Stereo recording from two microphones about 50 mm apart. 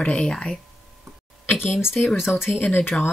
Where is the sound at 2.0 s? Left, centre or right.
Left.